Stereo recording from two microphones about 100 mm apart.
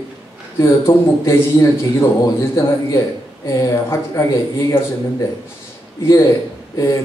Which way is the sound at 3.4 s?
30° left (ahead or behind).